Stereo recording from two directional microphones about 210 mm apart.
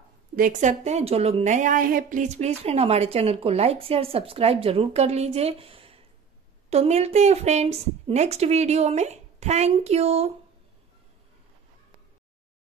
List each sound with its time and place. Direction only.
0.4 s a woman's voice: 35° right (ahead or behind)